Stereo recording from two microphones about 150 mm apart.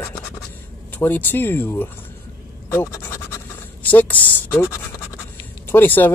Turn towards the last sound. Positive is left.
turn(degrees=10)  # may be behind; listen again after turning